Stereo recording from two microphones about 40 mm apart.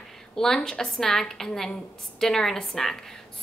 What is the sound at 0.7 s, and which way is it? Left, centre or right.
A woman's voice, centre.